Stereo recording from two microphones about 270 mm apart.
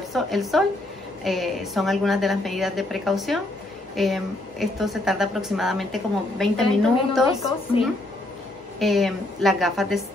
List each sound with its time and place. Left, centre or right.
0.1 s a woman's voice: centre
7.7 s speech: left
8.7 s a woman's voice: centre